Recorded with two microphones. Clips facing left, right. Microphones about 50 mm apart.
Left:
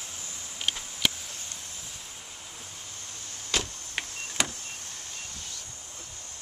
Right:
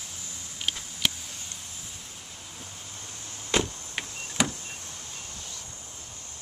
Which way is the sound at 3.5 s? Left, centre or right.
Right.